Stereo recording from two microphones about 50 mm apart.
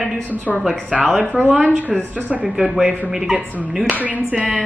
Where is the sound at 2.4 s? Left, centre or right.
Centre.